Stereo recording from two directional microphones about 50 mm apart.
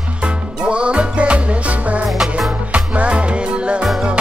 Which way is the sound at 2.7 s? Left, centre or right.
Right.